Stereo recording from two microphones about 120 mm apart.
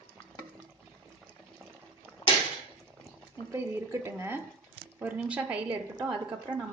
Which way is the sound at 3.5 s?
20° right (ahead or behind).